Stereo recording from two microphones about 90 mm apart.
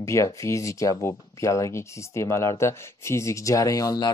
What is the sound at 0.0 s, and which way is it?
Speech, 35° left (ahead or behind).